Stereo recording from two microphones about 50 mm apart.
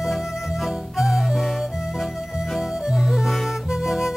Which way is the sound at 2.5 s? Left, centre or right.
Centre.